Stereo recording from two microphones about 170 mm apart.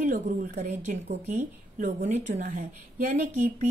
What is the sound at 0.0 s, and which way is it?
A woman's voice, 45° right (ahead or behind).